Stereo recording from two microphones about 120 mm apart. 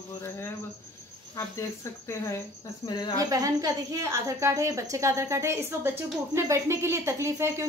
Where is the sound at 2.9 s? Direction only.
35° left (ahead or behind).